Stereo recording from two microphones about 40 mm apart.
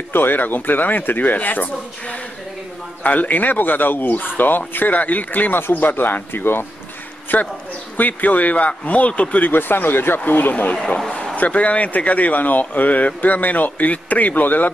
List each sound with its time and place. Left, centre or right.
0.1 s speech: left
3.0 s speech: left
5.6 s speech: left
6.3 s speech: left
7.3 s speech: left
9.5 s speech: left